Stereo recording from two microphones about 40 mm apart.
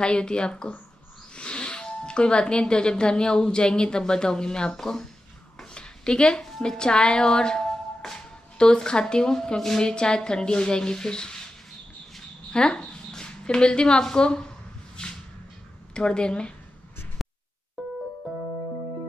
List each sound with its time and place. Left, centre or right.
0.0 s a woman's voice: left
5.6 s a sound: left
9.0 s a woman's voice: centre
12.5 s speech: left
15.0 s a sound: left
15.9 s a woman's voice: left